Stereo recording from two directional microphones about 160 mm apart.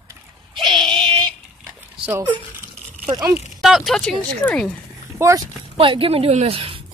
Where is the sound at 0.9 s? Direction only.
25° right (ahead or behind).